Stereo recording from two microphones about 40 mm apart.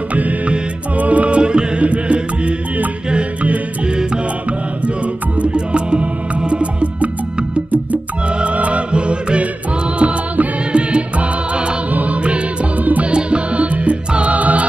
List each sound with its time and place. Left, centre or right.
0.1 s music: right
4.5 s music: right
9.9 s music: right
10.7 s music: right
11.9 s music: right
12.2 s music: right
12.8 s music: right
13.1 s music: right